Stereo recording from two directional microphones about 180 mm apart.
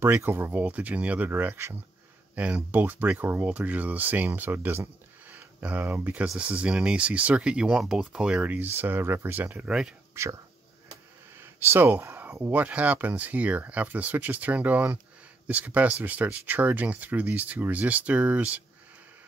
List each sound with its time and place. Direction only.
0.0 s speech: 15° right (ahead or behind)
10.2 s speech: 15° right (ahead or behind)
11.3 s speech: 10° right (ahead or behind)